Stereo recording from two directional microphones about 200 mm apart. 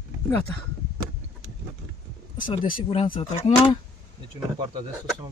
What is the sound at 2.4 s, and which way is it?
Speech, 25° left (ahead or behind).